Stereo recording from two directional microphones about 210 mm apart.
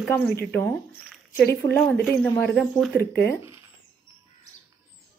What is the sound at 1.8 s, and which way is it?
A woman's voice, 5° left (ahead or behind).